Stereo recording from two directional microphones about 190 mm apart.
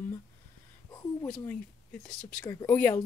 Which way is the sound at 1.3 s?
5° left (ahead or behind).